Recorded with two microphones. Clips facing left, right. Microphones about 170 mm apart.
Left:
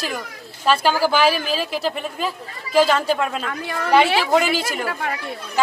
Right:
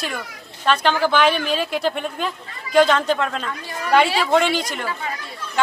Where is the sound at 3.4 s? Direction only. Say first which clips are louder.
Left 3 dB; 65° left (ahead or behind).